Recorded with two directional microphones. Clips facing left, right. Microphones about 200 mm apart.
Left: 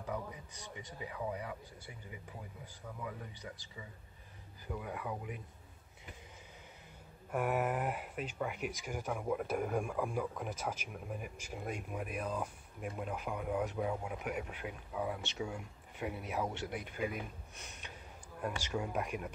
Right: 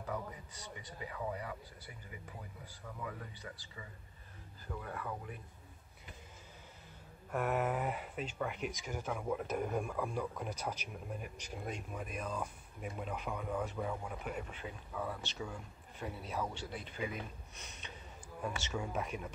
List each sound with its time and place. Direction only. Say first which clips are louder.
1.0 s speech: left 1 dB; 15° left (ahead or behind)
3.0 s speech: even; 10° left (ahead or behind)
7.2 s speech: left 1 dB; 10° left (ahead or behind)